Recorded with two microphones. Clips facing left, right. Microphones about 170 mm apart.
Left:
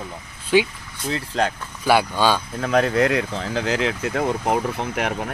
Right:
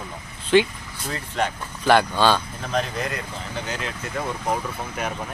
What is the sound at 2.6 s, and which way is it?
Speech, 65° left (ahead or behind).